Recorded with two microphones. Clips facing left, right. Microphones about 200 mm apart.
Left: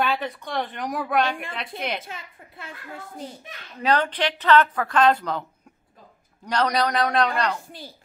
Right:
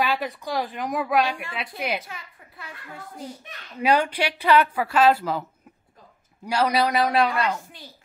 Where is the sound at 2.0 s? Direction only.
25° left (ahead or behind).